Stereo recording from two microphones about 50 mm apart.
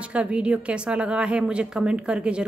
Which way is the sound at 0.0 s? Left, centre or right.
Right.